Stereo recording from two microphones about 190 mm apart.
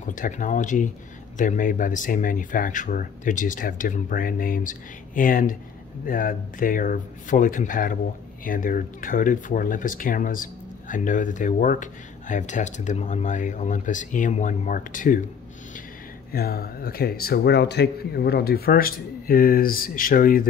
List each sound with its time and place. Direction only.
0.0 s speech: 45° left (ahead or behind)
16.3 s speech: 50° left (ahead or behind)